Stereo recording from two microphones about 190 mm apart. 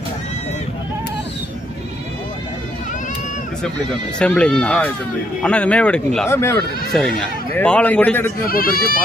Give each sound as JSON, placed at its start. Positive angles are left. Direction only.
{"t": 4.2, "sound": "speech", "side_deg": 5}
{"t": 6.9, "sound": "speech", "side_deg": 5}
{"t": 8.5, "sound": "speech", "side_deg": 50}